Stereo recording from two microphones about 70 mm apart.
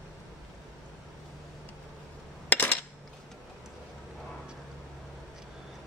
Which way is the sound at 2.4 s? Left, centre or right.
Left.